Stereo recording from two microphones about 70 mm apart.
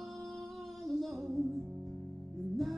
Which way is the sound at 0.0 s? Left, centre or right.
Centre.